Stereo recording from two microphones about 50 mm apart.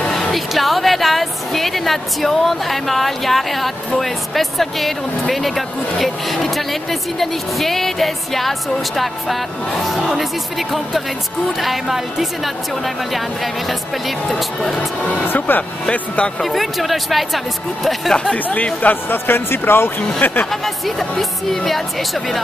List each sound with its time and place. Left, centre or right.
0.1 s a woman's voice: centre
11.6 s a woman's voice: centre
15.3 s speech: left
16.4 s a woman's voice: centre
18.3 s speech: left
19.2 s speech: left
20.2 s speech: left
20.6 s a woman's voice: centre